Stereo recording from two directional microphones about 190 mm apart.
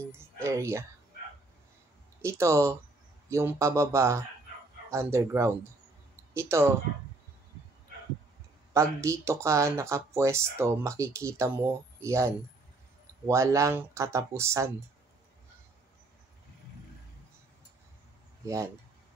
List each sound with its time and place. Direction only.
0.0 s speech: 15° right (ahead or behind)
2.2 s speech: 15° right (ahead or behind)
9.0 s speech: 15° right (ahead or behind)
18.4 s speech: 15° right (ahead or behind)